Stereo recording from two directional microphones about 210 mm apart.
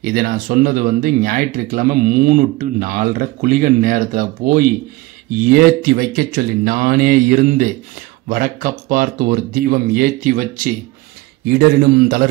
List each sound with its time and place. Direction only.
0.0 s speech: 45° right (ahead or behind)